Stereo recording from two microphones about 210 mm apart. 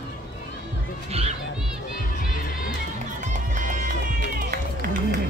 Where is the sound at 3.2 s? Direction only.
35° right (ahead or behind).